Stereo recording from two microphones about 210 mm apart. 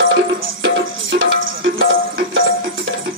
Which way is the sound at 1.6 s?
65° right (ahead or behind).